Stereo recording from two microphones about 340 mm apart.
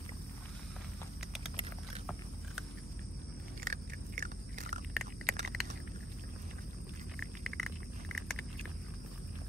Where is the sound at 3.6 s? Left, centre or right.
Right.